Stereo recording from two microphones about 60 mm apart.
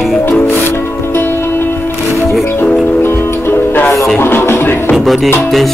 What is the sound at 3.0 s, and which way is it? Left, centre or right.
Music, left.